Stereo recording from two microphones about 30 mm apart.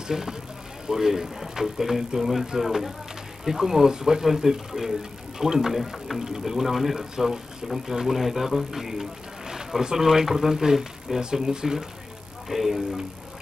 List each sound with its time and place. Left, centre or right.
0.1 s speech: centre
9.5 s a sound: centre
9.9 s speech: centre
12.4 s speech: centre